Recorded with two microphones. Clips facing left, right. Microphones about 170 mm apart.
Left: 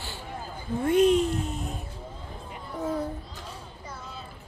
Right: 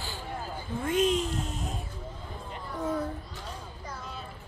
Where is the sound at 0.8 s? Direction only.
60° left (ahead or behind).